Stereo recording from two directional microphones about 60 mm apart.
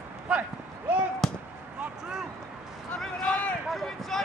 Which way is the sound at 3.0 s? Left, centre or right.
Centre.